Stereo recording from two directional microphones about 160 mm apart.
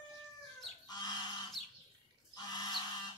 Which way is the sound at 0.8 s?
25° left (ahead or behind).